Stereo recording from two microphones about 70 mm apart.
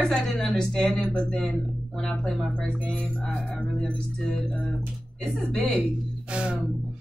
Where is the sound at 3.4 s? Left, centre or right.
Centre.